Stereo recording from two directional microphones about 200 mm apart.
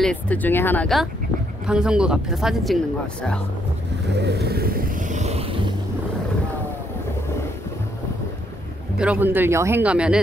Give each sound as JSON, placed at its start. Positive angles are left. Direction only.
{"t": 0.0, "sound": "speech", "side_deg": 5}
{"t": 4.2, "sound": "music", "side_deg": -55}
{"t": 8.9, "sound": "speech", "side_deg": -5}